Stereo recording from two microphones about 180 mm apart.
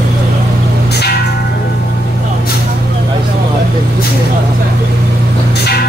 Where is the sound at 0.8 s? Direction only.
65° left (ahead or behind).